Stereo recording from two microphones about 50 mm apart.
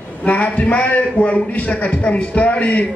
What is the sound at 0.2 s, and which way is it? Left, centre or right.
A man's voice, left.